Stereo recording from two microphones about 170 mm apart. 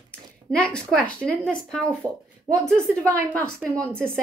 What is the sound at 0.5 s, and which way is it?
A woman's voice, 5° left (ahead or behind).